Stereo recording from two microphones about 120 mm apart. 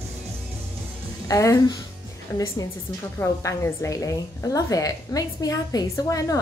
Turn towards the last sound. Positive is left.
turn(degrees=30)  # may be behind; listen again after turning